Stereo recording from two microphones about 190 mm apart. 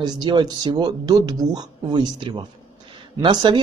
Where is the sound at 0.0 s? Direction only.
25° right (ahead or behind).